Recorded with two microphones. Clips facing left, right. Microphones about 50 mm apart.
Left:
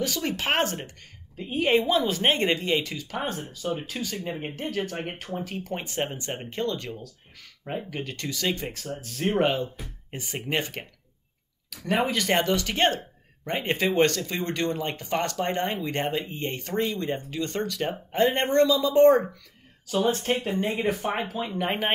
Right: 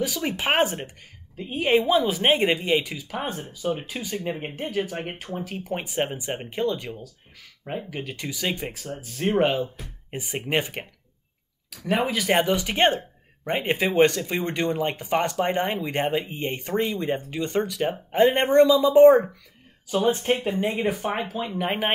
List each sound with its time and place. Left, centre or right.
0.0 s speech: centre
1.3 s speech: centre
10.1 s speech: centre
11.7 s speech: centre; by 13.7 s right
13.7 s speech: centre